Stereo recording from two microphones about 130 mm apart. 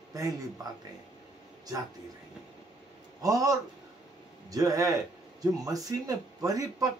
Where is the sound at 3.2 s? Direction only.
25° right (ahead or behind).